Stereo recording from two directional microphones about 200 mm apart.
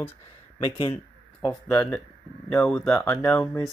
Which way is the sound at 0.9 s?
10° left (ahead or behind).